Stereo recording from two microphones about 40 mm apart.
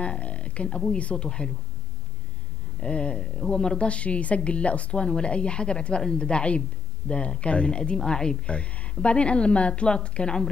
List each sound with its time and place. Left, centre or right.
0.0 s a sound: left
0.7 s speech: left
2.8 s speech: left